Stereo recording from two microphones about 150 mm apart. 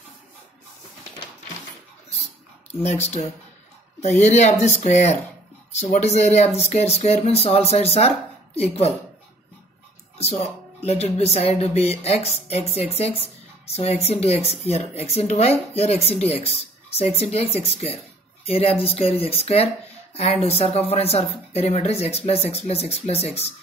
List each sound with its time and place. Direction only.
2.7 s a woman's voice: 45° left (ahead or behind)
10.1 s a woman's voice: 45° left (ahead or behind)